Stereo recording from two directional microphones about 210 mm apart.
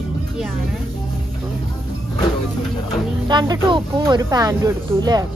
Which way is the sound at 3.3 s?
20° right (ahead or behind).